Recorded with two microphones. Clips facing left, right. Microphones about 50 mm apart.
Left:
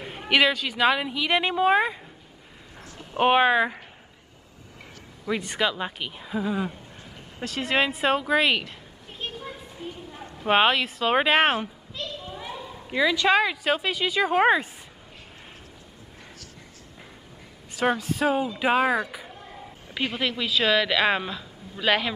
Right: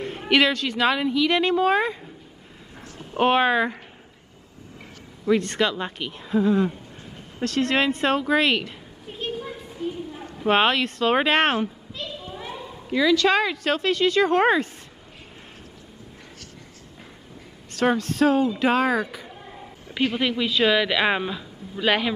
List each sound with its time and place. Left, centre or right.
0.0 s speech: centre
3.2 s speech: centre
5.2 s speech: centre
7.3 s a sound: centre
10.3 s speech: centre
12.2 s children playing: centre
12.9 s speech: centre
17.7 s speech: centre